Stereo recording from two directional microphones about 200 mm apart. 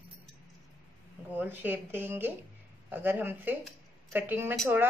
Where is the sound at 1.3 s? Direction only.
10° right (ahead or behind).